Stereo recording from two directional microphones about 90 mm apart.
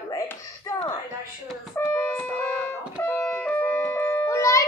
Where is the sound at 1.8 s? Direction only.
20° left (ahead or behind).